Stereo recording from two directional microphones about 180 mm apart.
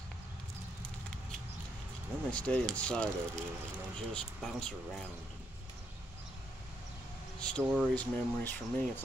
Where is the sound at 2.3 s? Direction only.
5° left (ahead or behind).